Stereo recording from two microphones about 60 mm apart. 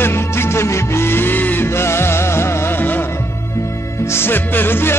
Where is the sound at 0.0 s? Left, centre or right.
Left.